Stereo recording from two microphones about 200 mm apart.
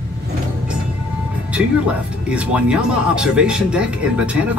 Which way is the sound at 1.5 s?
5° right (ahead or behind).